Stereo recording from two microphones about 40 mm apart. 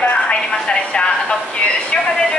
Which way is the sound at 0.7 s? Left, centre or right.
Left.